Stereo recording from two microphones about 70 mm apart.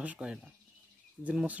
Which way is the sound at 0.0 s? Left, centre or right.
Centre.